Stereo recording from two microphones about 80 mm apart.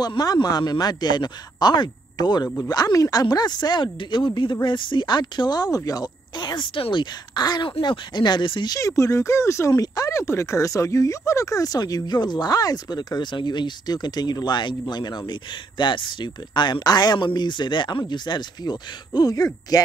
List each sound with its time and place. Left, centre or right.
0.2 s speech: left
6.3 s speech: left
8.7 s speech: left
15.8 s speech: left